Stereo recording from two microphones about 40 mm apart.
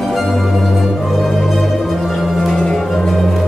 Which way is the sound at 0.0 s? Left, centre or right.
Centre.